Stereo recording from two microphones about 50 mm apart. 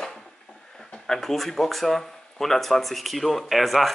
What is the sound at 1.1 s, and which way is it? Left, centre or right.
Speech, centre.